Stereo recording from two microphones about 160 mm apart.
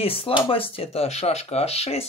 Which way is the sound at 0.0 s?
35° left (ahead or behind).